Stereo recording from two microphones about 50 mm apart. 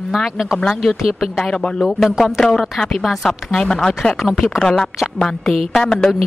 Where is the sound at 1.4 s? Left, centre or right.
Centre.